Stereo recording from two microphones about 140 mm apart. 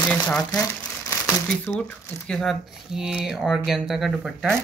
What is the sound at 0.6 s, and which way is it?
Crumpling, 20° left (ahead or behind).